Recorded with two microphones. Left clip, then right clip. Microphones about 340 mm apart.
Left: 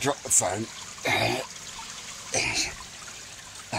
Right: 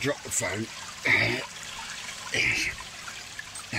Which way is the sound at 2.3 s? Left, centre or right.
Left.